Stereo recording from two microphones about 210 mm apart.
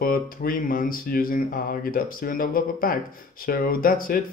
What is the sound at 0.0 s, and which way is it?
Speech, 45° left (ahead or behind).